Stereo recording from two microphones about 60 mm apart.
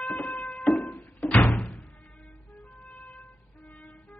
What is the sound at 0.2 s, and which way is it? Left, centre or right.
Music, left.